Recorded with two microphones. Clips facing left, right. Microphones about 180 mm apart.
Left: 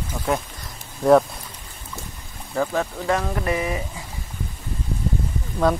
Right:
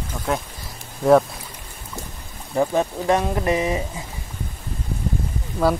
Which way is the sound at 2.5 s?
20° right (ahead or behind).